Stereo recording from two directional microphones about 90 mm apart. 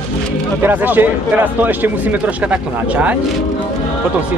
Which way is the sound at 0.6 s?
20° right (ahead or behind).